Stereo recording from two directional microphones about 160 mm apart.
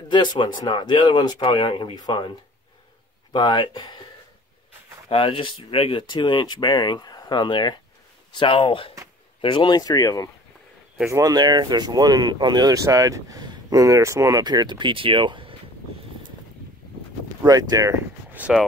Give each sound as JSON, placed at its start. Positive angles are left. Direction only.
{"t": 0.1, "sound": "speech", "side_deg": 30}
{"t": 3.3, "sound": "speech", "side_deg": 30}
{"t": 5.1, "sound": "speech", "side_deg": 35}
{"t": 11.1, "sound": "speech", "side_deg": -20}
{"t": 17.4, "sound": "speech", "side_deg": -25}
{"t": 18.3, "sound": "a sound", "side_deg": -10}